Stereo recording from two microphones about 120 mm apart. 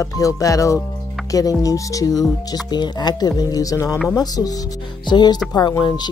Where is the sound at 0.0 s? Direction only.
30° left (ahead or behind).